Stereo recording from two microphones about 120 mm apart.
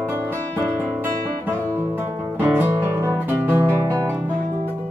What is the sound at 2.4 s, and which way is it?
Music, 15° right (ahead or behind).